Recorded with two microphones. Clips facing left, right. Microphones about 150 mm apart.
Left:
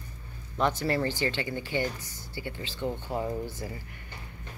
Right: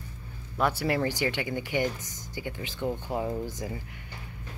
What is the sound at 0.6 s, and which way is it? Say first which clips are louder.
Speech: even; 10° right (ahead or behind).